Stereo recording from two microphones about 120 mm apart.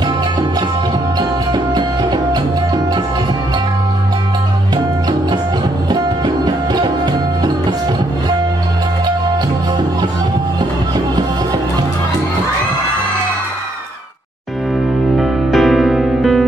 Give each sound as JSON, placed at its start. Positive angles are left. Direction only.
{"t": 1.5, "sound": "music", "side_deg": -35}
{"t": 5.9, "sound": "music", "side_deg": -35}
{"t": 15.1, "sound": "music", "side_deg": 0}